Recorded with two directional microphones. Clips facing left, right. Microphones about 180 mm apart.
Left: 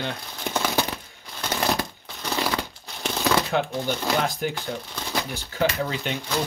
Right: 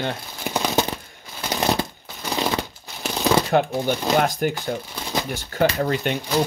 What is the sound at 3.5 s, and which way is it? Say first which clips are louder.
Speech: right 5 dB; 50° right (ahead or behind).